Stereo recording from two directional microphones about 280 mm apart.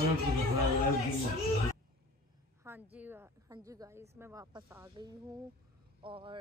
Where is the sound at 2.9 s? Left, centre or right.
Centre.